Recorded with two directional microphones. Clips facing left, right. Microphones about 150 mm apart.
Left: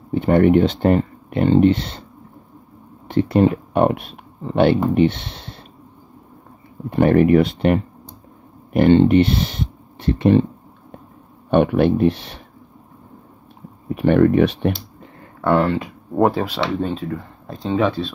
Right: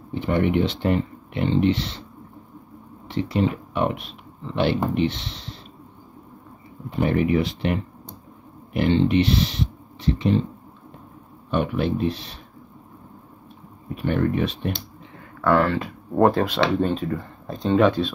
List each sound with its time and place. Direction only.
0.1 s speech: 50° left (ahead or behind)
3.1 s speech: 50° left (ahead or behind)
6.9 s speech: 55° left (ahead or behind)
11.5 s speech: 65° left (ahead or behind)
13.9 s speech: 80° left
15.4 s speech: 20° left (ahead or behind)
16.2 s speech: 10° left (ahead or behind)